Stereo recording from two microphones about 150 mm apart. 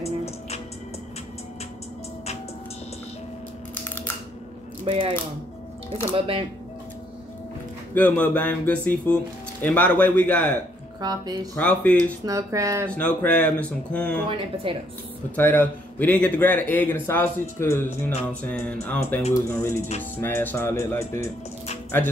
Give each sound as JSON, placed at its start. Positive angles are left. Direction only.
{"t": 0.0, "sound": "music", "side_deg": 45}
{"t": 4.8, "sound": "speech", "side_deg": -40}
{"t": 6.1, "sound": "speech", "side_deg": -35}
{"t": 7.9, "sound": "speech", "side_deg": 10}
{"t": 11.0, "sound": "speech", "side_deg": -25}
{"t": 11.5, "sound": "speech", "side_deg": 10}
{"t": 12.3, "sound": "speech", "side_deg": -20}
{"t": 12.9, "sound": "speech", "side_deg": 10}
{"t": 14.3, "sound": "speech", "side_deg": -35}
{"t": 15.3, "sound": "speech", "side_deg": 10}